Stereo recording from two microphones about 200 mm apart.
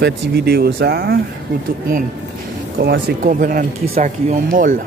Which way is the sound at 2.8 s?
45° right (ahead or behind).